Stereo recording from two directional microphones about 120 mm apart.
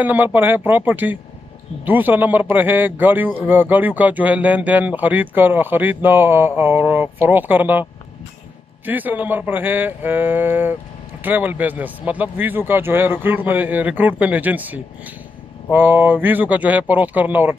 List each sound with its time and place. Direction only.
0.0 s a man's voice: 15° right (ahead or behind)
8.8 s a man's voice: 15° right (ahead or behind)